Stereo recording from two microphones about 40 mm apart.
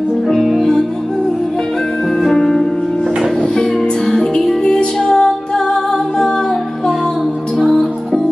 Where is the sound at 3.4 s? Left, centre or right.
Left.